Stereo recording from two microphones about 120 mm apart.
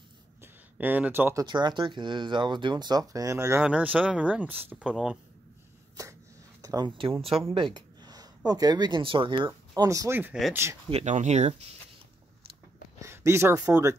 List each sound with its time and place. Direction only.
0.4 s a sound: 15° right (ahead or behind)
1.3 s speech: 35° right (ahead or behind)
3.6 s speech: 10° right (ahead or behind)
6.6 s a sound: 30° right (ahead or behind)
7.0 s speech: 50° right (ahead or behind)
9.8 s speech: 25° right (ahead or behind)
10.9 s speech: 70° right (ahead or behind)
13.0 s speech: 25° right (ahead or behind)